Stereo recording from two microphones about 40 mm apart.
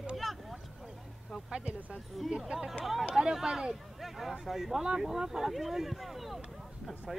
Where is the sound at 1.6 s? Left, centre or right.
Right.